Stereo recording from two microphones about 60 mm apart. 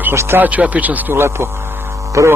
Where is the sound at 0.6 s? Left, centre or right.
Right.